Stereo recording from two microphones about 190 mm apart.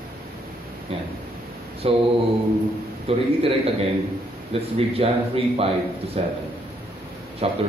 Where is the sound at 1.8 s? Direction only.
30° right (ahead or behind).